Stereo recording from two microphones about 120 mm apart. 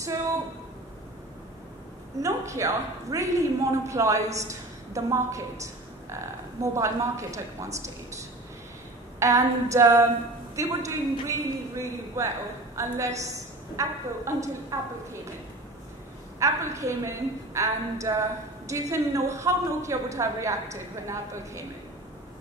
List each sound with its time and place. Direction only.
2.2 s a woman's voice: 25° right (ahead or behind)
9.2 s a woman's voice: 25° right (ahead or behind)
16.3 s a woman's voice: 25° right (ahead or behind)